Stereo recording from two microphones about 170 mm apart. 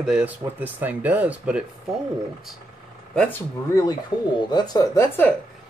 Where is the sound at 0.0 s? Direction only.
5° right (ahead or behind).